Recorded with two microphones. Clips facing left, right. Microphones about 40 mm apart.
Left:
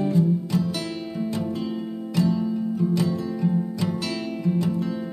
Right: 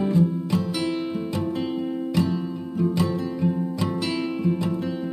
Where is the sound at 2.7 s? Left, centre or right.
Right.